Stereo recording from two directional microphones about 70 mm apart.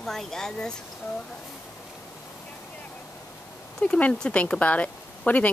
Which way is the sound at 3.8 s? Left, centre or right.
Centre.